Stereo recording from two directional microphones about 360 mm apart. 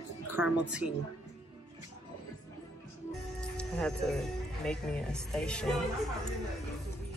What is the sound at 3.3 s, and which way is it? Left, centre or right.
Music, centre.